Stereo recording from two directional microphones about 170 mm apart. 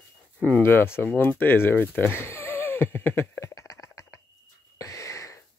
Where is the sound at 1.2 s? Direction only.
10° left (ahead or behind).